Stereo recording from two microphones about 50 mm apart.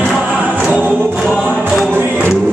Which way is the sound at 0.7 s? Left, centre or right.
Left.